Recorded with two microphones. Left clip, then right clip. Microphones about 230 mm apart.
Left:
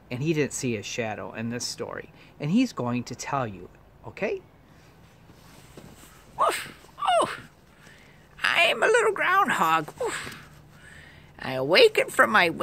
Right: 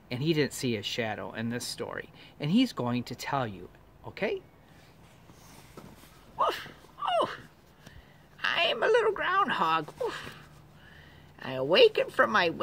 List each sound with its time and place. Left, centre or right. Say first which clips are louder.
0.1 s speech: left 2 dB; centre
6.3 s a sound: left 4 dB; left
8.4 s speech: left 6 dB; left